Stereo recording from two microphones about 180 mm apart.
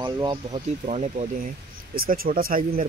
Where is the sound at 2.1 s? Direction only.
55° right (ahead or behind).